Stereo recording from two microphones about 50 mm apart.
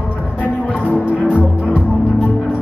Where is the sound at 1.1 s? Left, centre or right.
Right.